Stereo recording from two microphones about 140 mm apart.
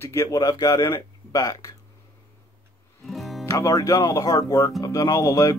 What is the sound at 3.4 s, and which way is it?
Speech, 25° left (ahead or behind).